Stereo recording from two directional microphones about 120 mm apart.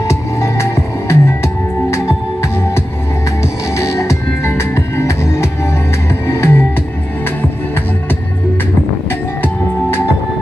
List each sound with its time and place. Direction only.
0.1 s music: 25° left (ahead or behind)
3.7 s music: 25° left (ahead or behind)
9.4 s music: 20° left (ahead or behind)